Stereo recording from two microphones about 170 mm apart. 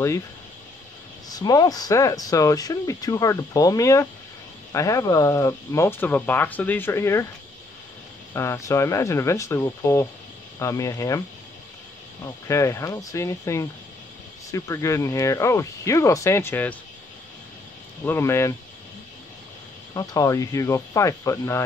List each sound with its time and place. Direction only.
1.3 s speech: 25° left (ahead or behind)
8.3 s speech: 15° left (ahead or behind)
18.0 s speech: 15° left (ahead or behind)
19.9 s speech: 20° left (ahead or behind)